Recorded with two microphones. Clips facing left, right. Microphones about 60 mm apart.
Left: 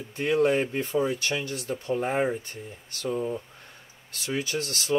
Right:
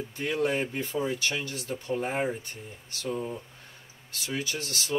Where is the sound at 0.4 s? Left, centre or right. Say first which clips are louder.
Left 5 dB; left.